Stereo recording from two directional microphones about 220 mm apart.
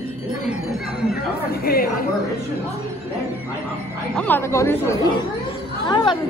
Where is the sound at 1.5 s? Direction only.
45° left (ahead or behind).